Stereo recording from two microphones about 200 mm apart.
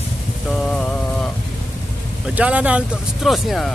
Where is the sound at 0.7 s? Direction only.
5° left (ahead or behind).